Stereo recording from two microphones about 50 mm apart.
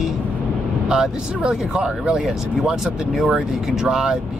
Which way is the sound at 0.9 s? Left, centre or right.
Centre.